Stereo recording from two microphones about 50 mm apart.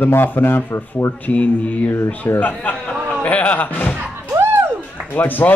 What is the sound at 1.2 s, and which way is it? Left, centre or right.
A man's voice, left.